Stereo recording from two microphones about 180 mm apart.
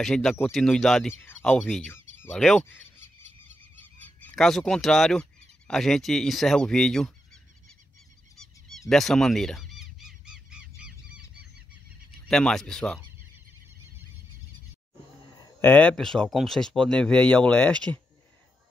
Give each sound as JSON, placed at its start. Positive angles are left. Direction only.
{"t": 0.0, "sound": "speech", "side_deg": 0}
{"t": 2.6, "sound": "fowl", "side_deg": 15}
{"t": 3.8, "sound": "speech", "side_deg": 10}
{"t": 8.4, "sound": "goose", "side_deg": 0}
{"t": 10.8, "sound": "squeal", "side_deg": -5}
{"t": 12.3, "sound": "speech", "side_deg": 5}
{"t": 15.3, "sound": "bird", "side_deg": 20}
{"t": 15.7, "sound": "speech", "side_deg": 5}